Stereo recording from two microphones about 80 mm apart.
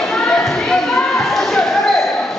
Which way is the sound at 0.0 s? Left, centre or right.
Centre.